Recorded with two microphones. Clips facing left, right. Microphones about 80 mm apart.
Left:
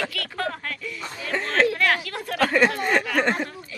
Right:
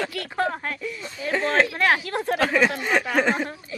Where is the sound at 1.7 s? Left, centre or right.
Right.